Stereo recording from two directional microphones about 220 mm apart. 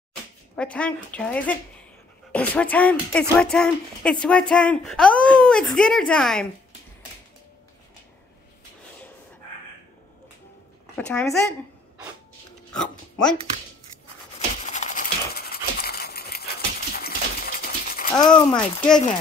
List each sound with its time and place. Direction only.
0.6 s speech: 5° left (ahead or behind)
11.0 s speech: 5° left (ahead or behind)
12.7 s speech: 5° left (ahead or behind)
14.7 s a sound: 35° left (ahead or behind)
18.1 s speech: 20° left (ahead or behind)
18.5 s speech: 5° left (ahead or behind)